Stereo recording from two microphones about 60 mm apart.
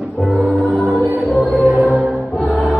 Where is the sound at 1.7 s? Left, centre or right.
Centre.